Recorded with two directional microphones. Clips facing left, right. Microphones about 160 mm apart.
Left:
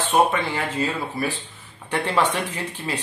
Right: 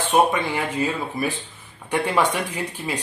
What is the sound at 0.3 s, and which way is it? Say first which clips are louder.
Speech: right 1 dB; 15° right (ahead or behind).